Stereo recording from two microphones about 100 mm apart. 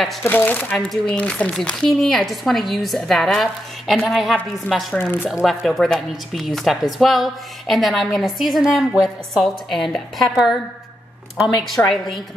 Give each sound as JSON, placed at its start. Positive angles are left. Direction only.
{"t": 0.2, "sound": "a woman's voice", "side_deg": 20}
{"t": 4.9, "sound": "speech", "side_deg": 20}
{"t": 5.3, "sound": "a woman's voice", "side_deg": -5}